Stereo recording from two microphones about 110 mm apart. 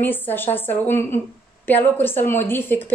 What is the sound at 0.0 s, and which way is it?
A woman's voice, 20° left (ahead or behind).